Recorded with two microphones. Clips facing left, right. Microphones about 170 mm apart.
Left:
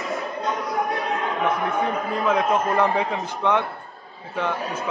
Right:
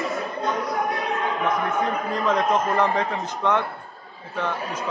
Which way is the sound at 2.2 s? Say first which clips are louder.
Left 1 dB; 10° left (ahead or behind).